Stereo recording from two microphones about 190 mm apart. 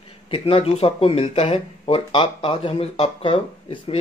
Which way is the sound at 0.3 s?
30° left (ahead or behind).